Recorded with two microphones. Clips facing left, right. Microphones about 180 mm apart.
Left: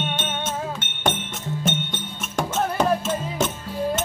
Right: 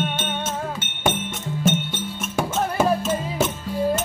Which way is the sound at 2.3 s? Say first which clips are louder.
Even; 5° right (ahead or behind).